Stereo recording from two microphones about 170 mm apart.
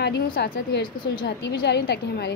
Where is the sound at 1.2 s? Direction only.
80° left.